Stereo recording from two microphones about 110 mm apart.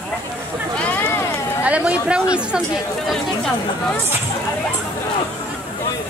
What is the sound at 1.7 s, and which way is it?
Speech, 10° right (ahead or behind).